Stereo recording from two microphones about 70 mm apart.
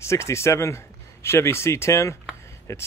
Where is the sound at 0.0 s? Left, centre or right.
Left.